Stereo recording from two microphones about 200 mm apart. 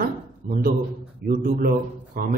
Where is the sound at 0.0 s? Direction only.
45° right (ahead or behind).